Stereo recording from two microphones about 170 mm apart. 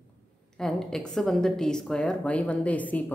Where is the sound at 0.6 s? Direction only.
5° left (ahead or behind).